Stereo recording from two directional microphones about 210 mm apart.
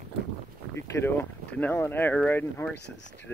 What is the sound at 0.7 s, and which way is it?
Speech, 10° left (ahead or behind).